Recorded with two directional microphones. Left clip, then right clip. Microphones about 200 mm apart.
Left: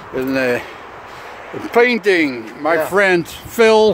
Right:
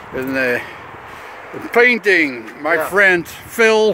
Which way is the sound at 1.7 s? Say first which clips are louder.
Right 1 dB; centre (ahead or behind).